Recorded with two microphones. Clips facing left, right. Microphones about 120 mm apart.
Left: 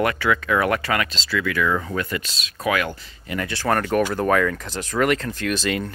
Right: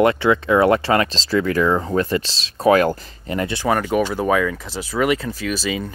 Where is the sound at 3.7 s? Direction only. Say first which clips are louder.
Even; 5° right (ahead or behind).